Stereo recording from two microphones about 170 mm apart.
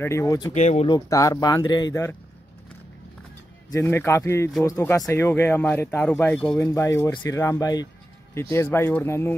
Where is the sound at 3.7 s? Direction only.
15° left (ahead or behind).